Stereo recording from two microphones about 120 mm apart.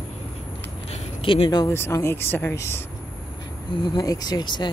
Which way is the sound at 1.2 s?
45° left (ahead or behind).